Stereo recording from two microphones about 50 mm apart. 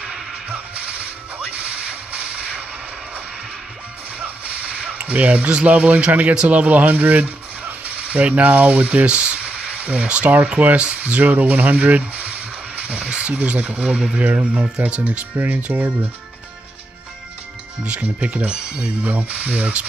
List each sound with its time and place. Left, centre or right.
0.0 s music: centre
0.5 s music: right
1.5 s whip: right
4.2 s a sound: right
6.3 s speech: right
7.8 s mechanisms: right
14.1 s speech: right
15.3 s speech: right
17.8 s speech: right